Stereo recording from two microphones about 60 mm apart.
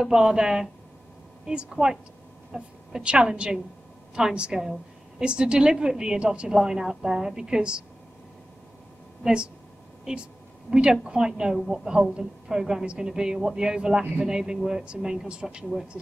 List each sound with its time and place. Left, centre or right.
0.0 s a woman's voice: centre
9.2 s a woman's voice: centre